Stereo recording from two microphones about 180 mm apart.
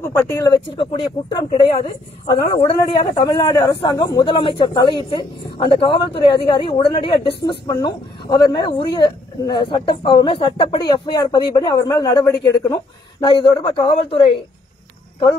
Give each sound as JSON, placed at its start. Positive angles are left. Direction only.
{"t": 0.0, "sound": "speech", "side_deg": 15}
{"t": 0.7, "sound": "a woman's voice", "side_deg": 30}